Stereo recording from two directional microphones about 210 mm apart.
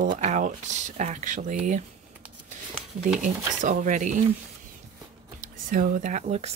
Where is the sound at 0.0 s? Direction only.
35° right (ahead or behind).